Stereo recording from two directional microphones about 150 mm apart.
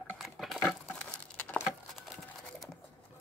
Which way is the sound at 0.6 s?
10° left (ahead or behind).